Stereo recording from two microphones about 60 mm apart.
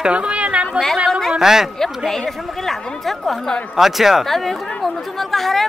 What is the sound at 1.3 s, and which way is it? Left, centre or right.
Speech, centre.